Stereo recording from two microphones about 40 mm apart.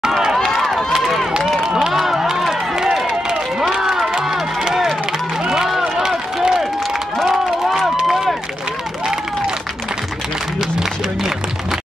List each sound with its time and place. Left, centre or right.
0.2 s run: centre
1.7 s a sound: centre
2.0 s crowd: centre
2.7 s run: centre
3.7 s crowd: centre
5.4 s a sound: centre
7.2 s run: centre